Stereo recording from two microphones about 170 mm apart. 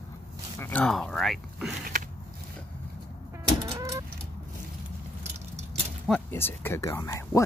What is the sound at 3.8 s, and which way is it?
Fowl, 20° right (ahead or behind).